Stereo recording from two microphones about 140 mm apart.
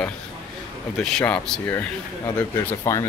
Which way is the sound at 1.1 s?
5° left (ahead or behind).